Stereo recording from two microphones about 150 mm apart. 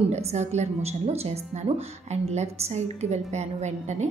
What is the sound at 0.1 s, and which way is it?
A woman's voice, 45° right (ahead or behind).